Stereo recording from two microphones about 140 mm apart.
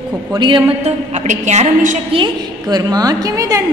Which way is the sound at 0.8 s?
55° right (ahead or behind).